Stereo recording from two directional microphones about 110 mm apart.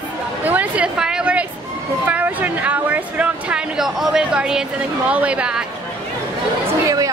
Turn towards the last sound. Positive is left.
turn(degrees=-10)  # may be behind; listen again after turning